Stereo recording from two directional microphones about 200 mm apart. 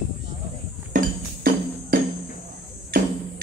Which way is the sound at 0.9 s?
40° right (ahead or behind).